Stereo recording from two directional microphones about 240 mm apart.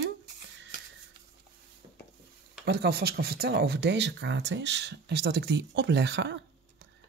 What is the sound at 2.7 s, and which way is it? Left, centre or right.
Speech, right.